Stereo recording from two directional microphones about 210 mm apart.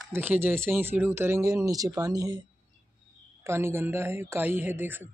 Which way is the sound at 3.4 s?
10° right (ahead or behind).